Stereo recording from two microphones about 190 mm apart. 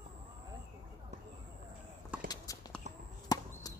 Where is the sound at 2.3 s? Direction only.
20° left (ahead or behind).